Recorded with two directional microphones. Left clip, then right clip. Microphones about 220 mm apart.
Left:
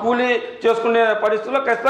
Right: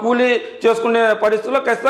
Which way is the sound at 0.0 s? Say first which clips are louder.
Right 2 dB; 45° right (ahead or behind).